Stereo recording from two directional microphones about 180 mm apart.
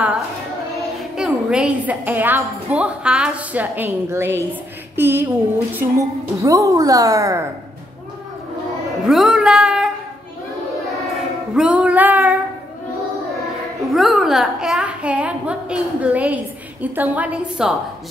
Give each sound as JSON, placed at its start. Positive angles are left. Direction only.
{"t": 1.1, "sound": "a woman's voice", "side_deg": -5}
{"t": 9.0, "sound": "speech", "side_deg": 0}
{"t": 11.5, "sound": "music", "side_deg": -5}
{"t": 13.9, "sound": "a child's voice", "side_deg": 0}